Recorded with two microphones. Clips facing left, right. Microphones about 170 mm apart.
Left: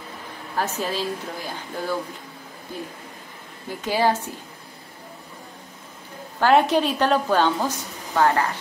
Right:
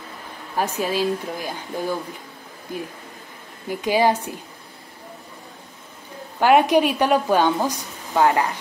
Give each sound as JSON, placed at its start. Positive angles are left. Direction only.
{"t": 0.6, "sound": "a woman's voice", "side_deg": -15}
{"t": 3.8, "sound": "a woman's voice", "side_deg": -15}
{"t": 6.4, "sound": "a woman's voice", "side_deg": -15}